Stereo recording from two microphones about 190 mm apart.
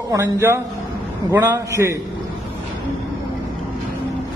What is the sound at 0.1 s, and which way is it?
A man's voice, 15° right (ahead or behind).